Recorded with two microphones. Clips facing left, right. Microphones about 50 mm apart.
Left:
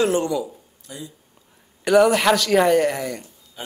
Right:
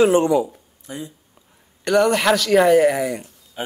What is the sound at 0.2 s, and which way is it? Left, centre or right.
Speech, right.